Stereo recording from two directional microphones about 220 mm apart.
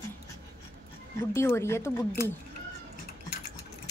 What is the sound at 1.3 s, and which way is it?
Speech, 10° left (ahead or behind).